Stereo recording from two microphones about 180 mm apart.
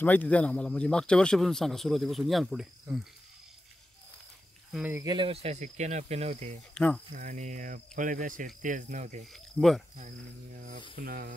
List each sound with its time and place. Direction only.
0.0 s a man's voice: 10° left (ahead or behind)
4.9 s speech: 25° right (ahead or behind)
6.7 s speech: 5° left (ahead or behind)
7.2 s cricket: 45° right (ahead or behind)
9.3 s speech: centre (ahead or behind)
11.0 s cricket: 55° right (ahead or behind)